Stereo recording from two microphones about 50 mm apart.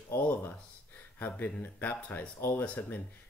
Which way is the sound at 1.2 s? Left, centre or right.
Left.